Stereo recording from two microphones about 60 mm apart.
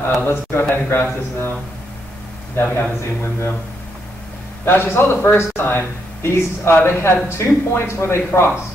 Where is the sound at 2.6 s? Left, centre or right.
Left.